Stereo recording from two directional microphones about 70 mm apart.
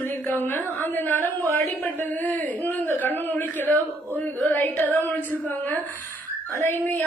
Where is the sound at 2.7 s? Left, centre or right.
Left.